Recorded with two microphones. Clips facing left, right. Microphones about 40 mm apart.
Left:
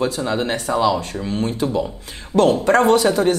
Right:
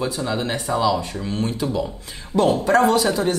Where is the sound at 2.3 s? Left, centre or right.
Left.